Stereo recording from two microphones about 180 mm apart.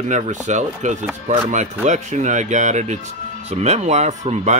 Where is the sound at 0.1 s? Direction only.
40° right (ahead or behind).